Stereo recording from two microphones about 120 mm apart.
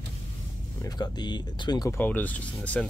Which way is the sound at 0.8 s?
35° left (ahead or behind).